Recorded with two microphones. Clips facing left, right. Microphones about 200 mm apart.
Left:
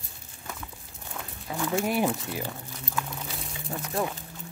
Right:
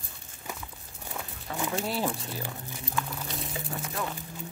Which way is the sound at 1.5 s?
10° left (ahead or behind).